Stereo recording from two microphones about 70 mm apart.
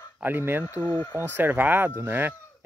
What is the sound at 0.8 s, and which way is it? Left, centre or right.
Speech, left.